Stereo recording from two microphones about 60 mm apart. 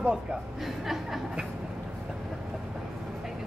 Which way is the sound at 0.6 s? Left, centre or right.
Centre.